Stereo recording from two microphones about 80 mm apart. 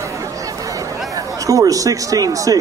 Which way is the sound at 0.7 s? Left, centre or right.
Right.